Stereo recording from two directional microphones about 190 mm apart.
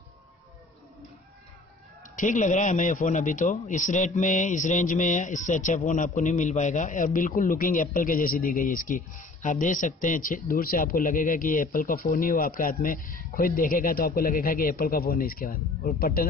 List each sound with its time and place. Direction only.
2.1 s a man's voice: 40° left (ahead or behind)